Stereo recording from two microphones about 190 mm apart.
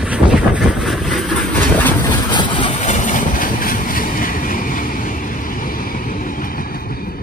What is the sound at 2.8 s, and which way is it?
Vehicle, 40° left (ahead or behind).